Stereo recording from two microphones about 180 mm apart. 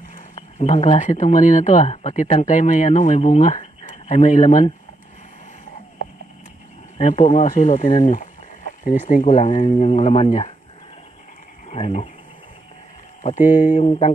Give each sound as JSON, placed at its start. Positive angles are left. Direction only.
{"t": 0.1, "sound": "speech", "side_deg": 40}
{"t": 7.0, "sound": "speech", "side_deg": 40}
{"t": 11.7, "sound": "speech", "side_deg": 35}
{"t": 13.2, "sound": "speech", "side_deg": 45}